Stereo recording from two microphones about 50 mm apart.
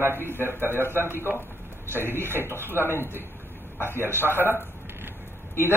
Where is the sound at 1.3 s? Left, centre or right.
Right.